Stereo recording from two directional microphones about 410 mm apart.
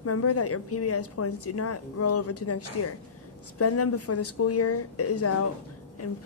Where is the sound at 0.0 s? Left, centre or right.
Left.